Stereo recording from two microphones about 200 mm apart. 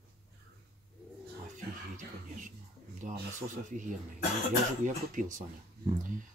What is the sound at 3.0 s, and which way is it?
Speech, 40° right (ahead or behind).